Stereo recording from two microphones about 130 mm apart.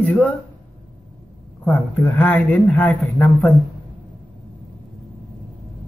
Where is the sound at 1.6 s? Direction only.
10° left (ahead or behind).